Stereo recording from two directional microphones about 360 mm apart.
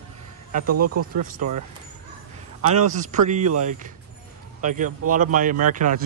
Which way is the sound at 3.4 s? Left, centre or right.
Right.